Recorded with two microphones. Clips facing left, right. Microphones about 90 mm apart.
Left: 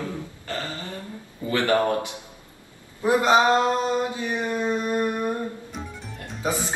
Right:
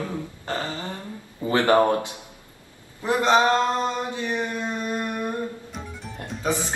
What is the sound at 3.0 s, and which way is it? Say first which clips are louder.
Speech: left 1 dB; 10° left (ahead or behind).